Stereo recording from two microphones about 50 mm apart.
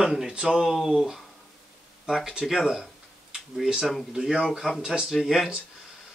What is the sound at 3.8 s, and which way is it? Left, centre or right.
Speech, centre.